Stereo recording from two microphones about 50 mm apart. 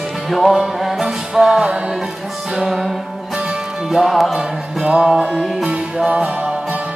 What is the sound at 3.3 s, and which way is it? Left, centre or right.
Music, centre.